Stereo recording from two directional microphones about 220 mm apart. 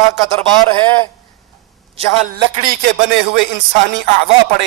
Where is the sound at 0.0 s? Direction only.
15° left (ahead or behind).